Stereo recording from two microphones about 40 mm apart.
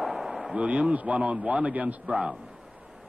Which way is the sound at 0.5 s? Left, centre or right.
Right.